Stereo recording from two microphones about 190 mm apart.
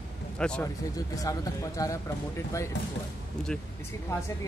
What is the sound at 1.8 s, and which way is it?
Speech, 20° left (ahead or behind).